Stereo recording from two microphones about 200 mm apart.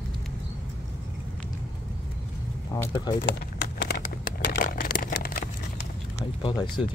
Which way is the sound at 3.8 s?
50° left (ahead or behind).